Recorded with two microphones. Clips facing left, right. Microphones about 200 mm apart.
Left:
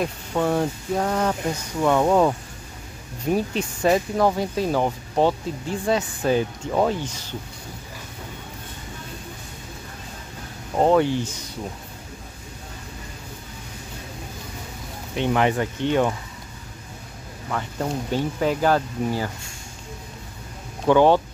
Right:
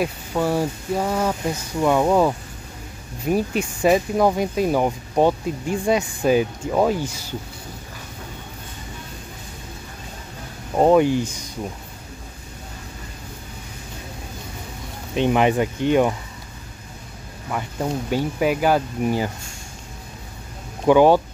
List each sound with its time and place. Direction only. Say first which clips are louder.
0.0 s speech: right 1 dB; 5° right (ahead or behind)
10.8 s speech: right 3 dB; 15° right (ahead or behind)
15.1 s speech: right 3 dB; 15° right (ahead or behind)
17.5 s speech: right 2 dB; 10° right (ahead or behind)
20.8 s speech: right 2 dB; 10° right (ahead or behind)